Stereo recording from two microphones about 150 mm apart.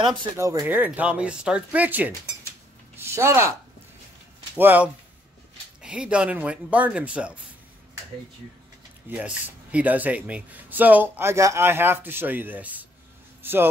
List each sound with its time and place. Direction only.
0.0 s speech: 30° right (ahead or behind)
0.4 s speech: 20° right (ahead or behind)
4.6 s speech: 10° right (ahead or behind)
9.1 s speech: 10° right (ahead or behind)
13.4 s a sound: 15° right (ahead or behind)